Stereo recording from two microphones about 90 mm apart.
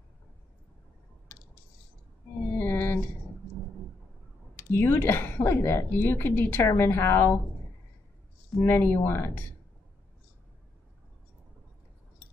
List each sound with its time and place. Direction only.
1.3 s mechanisms: 25° left (ahead or behind)
2.6 s a sound: 25° left (ahead or behind)
4.6 s speech: 25° left (ahead or behind)
8.6 s speech: 30° left (ahead or behind)